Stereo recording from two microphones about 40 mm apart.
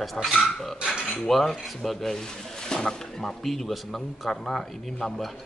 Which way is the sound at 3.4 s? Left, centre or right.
Centre.